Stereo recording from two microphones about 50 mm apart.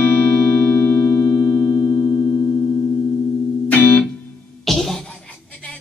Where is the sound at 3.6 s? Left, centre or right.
Left.